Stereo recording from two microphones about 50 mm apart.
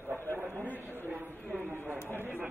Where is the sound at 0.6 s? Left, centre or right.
Left.